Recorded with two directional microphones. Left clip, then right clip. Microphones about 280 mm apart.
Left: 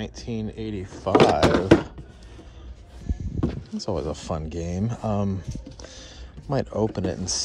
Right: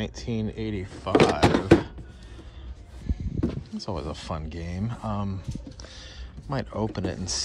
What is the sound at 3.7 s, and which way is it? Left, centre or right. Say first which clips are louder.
Speech: left 5 dB; centre.